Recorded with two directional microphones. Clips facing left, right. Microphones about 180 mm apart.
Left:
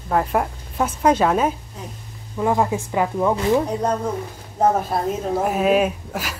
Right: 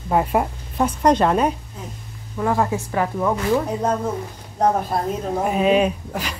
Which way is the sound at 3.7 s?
5° right (ahead or behind).